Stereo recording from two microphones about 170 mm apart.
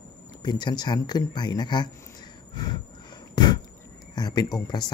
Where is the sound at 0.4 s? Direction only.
25° left (ahead or behind).